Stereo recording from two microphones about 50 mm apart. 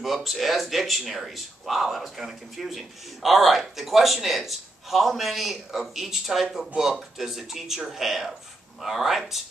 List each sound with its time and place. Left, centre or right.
0.0 s speech: centre